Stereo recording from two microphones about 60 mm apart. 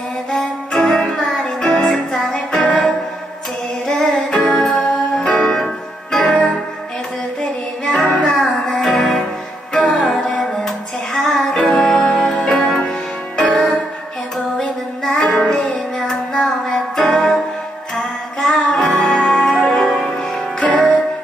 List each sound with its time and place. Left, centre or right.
0.3 s music: centre
2.3 s music: left
3.9 s music: centre
7.8 s music: centre